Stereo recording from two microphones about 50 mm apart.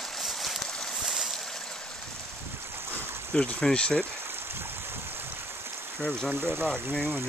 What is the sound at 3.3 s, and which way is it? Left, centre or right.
Speech, centre.